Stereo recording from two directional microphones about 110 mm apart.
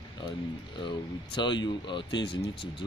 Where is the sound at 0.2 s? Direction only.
45° left (ahead or behind).